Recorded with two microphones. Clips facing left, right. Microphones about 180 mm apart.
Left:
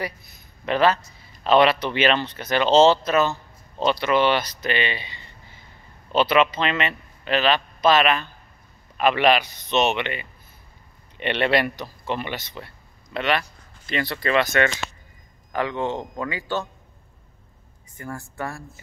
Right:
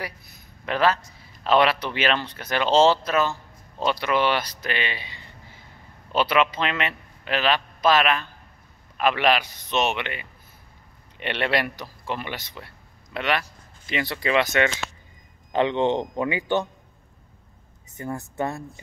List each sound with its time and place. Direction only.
0.7 s a man's voice: 5° right (ahead or behind)
17.9 s a man's voice: 20° right (ahead or behind)